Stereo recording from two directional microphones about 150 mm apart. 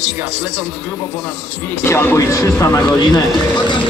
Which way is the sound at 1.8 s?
15° left (ahead or behind).